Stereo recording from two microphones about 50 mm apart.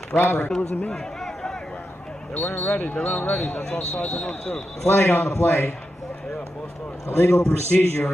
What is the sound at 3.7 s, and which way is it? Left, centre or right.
Speech, left.